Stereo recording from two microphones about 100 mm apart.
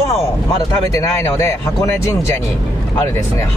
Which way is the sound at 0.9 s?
30° left (ahead or behind).